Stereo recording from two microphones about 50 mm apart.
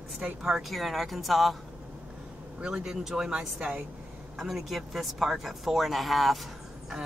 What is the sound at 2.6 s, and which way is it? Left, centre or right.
Speech, centre.